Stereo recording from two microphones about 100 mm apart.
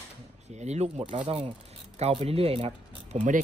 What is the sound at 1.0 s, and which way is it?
Speech, 65° right (ahead or behind).